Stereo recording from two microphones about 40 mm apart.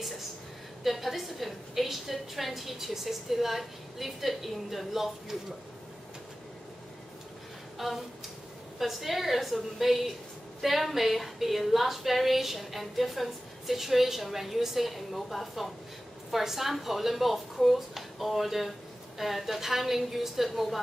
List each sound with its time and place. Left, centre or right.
0.8 s a woman's voice: centre
8.7 s a woman's voice: centre